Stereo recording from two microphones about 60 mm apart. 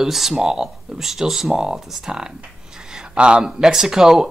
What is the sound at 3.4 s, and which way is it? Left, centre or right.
Speech, centre.